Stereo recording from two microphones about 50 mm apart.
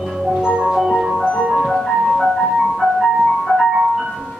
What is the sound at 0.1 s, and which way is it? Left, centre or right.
Music, centre.